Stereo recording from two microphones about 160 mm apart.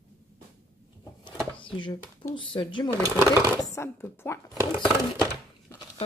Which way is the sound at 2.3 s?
30° left (ahead or behind).